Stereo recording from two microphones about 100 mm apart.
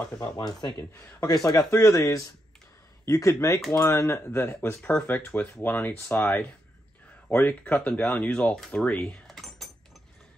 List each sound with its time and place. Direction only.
0.4 s speech: 45° left (ahead or behind); by 8.9 s 5° left (ahead or behind)
9.0 s keys jangling: centre (ahead or behind)